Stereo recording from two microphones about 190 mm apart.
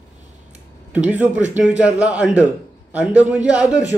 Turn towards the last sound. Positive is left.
turn(degrees=-5)  # may be behind; listen again after turning